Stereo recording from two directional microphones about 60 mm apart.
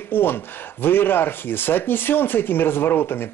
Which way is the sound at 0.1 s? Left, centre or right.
Left.